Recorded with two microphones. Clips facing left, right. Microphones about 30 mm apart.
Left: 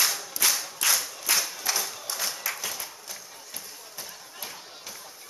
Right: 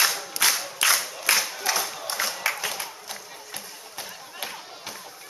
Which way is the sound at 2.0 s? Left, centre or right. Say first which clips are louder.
Right 4 dB; right.